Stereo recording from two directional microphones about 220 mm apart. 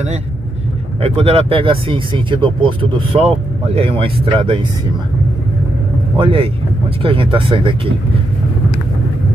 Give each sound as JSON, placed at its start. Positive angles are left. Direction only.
{"t": 1.0, "sound": "speech", "side_deg": -25}
{"t": 6.1, "sound": "speech", "side_deg": -25}